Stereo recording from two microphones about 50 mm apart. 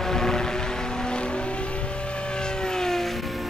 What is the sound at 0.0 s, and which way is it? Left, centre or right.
Vehicle, centre.